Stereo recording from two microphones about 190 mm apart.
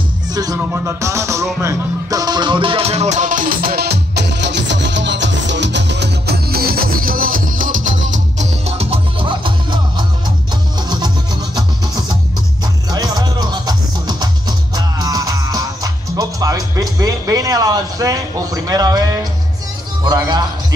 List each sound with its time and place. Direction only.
0.3 s music: 20° right (ahead or behind)
11.5 s music: 20° right (ahead or behind)
20.0 s speech: 20° right (ahead or behind)